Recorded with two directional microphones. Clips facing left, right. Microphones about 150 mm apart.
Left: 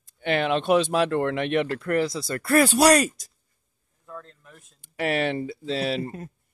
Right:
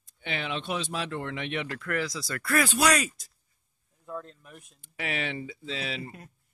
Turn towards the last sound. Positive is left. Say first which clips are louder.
# left 9 dB
turn(degrees=40)  # may be behind; listen again after turning